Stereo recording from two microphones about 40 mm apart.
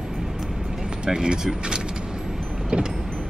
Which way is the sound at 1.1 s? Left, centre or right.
Centre.